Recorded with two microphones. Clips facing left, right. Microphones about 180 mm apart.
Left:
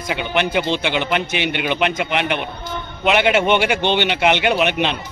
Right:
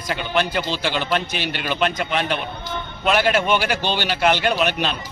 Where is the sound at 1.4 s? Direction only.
65° left (ahead or behind).